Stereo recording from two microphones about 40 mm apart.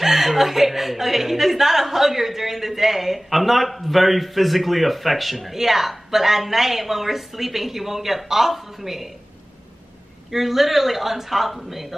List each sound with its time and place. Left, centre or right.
0.0 s speech: centre
10.3 s a man's voice: centre